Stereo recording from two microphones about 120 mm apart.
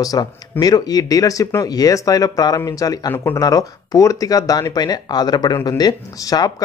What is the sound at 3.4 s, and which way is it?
Speech, 30° left (ahead or behind).